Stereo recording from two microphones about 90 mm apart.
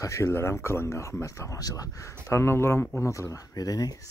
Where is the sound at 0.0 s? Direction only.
35° left (ahead or behind).